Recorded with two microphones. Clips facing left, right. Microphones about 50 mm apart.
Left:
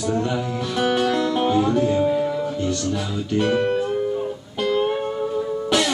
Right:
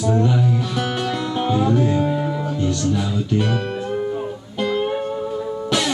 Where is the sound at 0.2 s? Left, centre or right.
Centre.